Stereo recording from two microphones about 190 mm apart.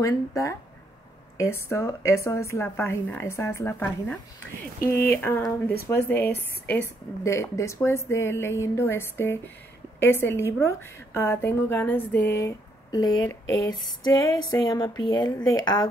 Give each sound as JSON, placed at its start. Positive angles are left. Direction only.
{"t": 0.0, "sound": "a woman's voice", "side_deg": 15}